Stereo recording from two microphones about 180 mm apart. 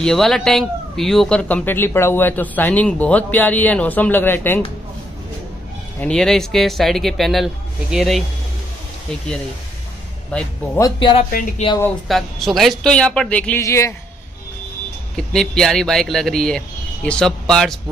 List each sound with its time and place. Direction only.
0.0 s speech: centre (ahead or behind)
5.9 s speech: 5° left (ahead or behind)
10.3 s speech: 5° left (ahead or behind)
10.8 s speech: 25° left (ahead or behind)
12.1 s speech: centre (ahead or behind)
15.1 s speech: 5° left (ahead or behind)